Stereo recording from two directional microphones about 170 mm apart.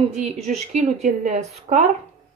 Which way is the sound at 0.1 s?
40° right (ahead or behind).